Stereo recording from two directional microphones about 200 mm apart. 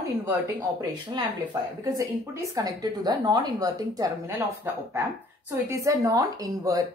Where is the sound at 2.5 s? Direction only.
20° right (ahead or behind).